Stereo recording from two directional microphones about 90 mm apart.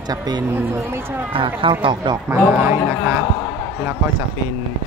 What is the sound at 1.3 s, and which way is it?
Speech, 75° right (ahead or behind).